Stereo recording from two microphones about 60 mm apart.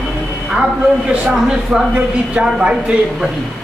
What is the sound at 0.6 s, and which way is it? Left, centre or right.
A man's voice, centre.